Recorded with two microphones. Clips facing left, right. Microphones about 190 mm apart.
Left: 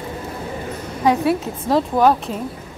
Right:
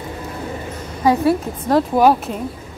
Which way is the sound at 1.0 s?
Centre (ahead or behind).